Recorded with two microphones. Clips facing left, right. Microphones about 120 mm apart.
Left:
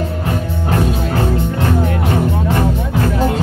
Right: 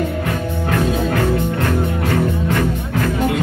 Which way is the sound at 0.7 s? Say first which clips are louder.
Even; 30° left (ahead or behind).